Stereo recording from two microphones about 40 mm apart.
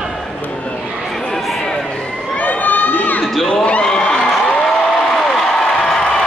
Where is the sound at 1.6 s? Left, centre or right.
Centre.